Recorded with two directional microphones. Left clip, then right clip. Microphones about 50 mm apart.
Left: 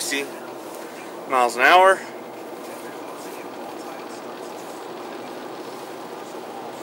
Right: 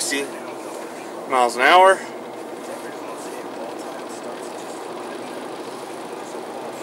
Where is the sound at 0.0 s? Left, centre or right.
Centre.